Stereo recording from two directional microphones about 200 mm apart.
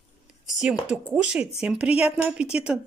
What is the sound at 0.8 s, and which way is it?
Speech, 5° right (ahead or behind).